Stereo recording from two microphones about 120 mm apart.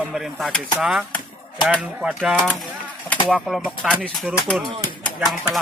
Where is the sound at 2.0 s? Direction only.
5° right (ahead or behind).